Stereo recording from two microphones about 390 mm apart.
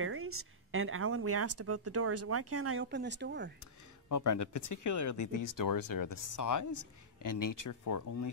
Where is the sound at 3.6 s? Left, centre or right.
Left.